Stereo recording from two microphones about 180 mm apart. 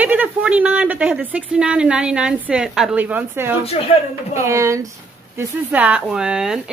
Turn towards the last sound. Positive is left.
turn(degrees=-5)  # may be behind; listen again after turning